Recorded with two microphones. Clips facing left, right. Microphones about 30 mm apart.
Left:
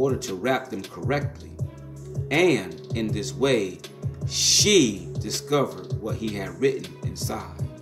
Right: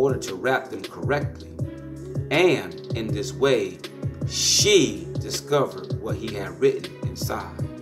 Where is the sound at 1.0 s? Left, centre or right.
Right.